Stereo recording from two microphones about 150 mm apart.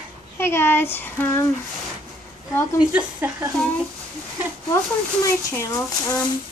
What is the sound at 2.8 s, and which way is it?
Speech, 10° right (ahead or behind).